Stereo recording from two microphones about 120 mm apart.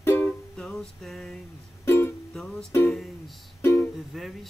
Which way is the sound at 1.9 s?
20° left (ahead or behind).